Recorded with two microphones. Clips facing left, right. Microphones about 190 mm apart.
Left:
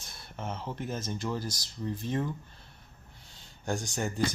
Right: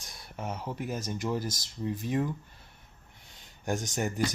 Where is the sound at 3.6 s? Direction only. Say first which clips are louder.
Right 1 dB; 20° right (ahead or behind).